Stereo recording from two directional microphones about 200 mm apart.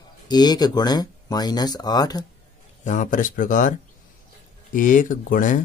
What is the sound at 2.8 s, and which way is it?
Speech, 40° left (ahead or behind).